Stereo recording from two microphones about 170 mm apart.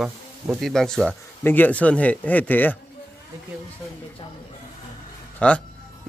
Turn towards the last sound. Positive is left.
turn(degrees=5)  # may be behind; listen again after turning